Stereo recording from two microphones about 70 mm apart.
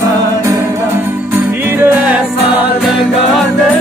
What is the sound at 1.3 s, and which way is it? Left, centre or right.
Music, right.